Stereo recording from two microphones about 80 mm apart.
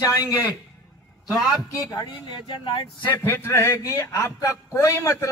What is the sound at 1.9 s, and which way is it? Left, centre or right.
Speech, left.